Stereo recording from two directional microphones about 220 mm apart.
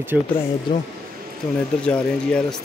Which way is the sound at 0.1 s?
5° right (ahead or behind).